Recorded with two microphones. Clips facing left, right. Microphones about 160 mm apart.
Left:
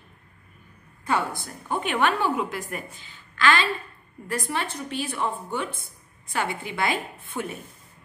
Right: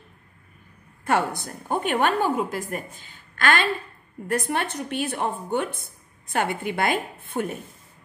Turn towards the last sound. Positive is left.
turn(degrees=-55)  # may be behind; listen again after turning